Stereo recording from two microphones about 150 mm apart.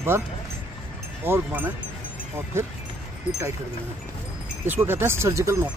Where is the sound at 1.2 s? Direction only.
15° right (ahead or behind).